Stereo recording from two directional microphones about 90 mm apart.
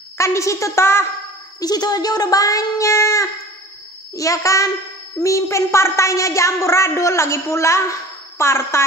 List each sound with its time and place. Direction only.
0.2 s speech: 35° left (ahead or behind)
1.6 s speech: 45° left (ahead or behind); by 8.8 s 30° left (ahead or behind)